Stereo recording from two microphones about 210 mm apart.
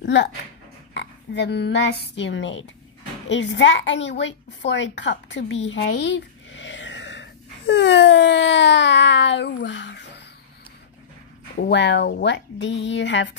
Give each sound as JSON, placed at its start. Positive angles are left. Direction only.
{"t": 0.0, "sound": "a woman's voice", "side_deg": 60}
{"t": 11.6, "sound": "speech", "side_deg": 55}